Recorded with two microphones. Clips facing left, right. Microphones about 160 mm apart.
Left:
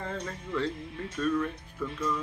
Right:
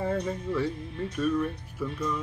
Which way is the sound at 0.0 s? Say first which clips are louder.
Right 7 dB; 10° right (ahead or behind).